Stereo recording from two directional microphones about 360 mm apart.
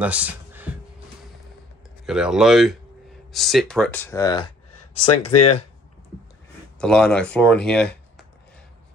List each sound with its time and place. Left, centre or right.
0.0 s a sound: centre
2.0 s speech: centre
5.1 s speech: left
6.8 s speech: centre